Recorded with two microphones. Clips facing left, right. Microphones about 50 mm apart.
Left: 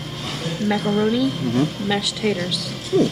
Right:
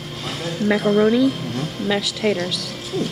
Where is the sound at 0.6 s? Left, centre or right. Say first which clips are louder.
Right 4 dB; centre.